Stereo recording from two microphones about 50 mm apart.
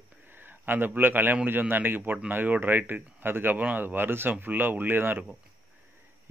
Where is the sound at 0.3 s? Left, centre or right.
Right.